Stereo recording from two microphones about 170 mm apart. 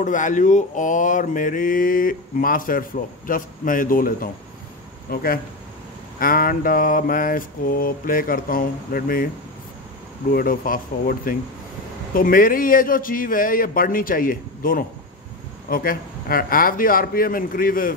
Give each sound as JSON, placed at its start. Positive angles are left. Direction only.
{"t": 0.0, "sound": "mantra", "side_deg": 50}
{"t": 10.3, "sound": "mantra", "side_deg": 55}